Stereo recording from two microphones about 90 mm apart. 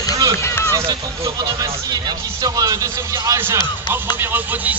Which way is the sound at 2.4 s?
40° right (ahead or behind).